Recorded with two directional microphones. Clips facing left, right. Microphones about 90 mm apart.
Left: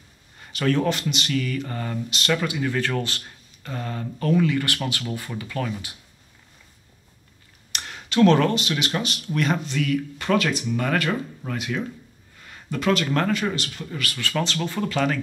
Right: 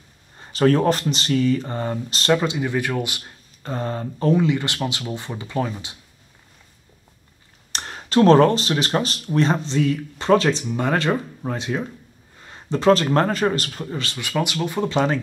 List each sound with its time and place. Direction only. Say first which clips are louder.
0.4 s speech: right 5 dB; 35° right (ahead or behind); by 3.3 s 15° right (ahead or behind)
3.6 s speech: right 5 dB; 35° right (ahead or behind)
7.7 s speech: right 5 dB; 35° right (ahead or behind)
14.1 s speech: right 2 dB; 15° right (ahead or behind)
14.9 s speech: right 3 dB; 25° right (ahead or behind)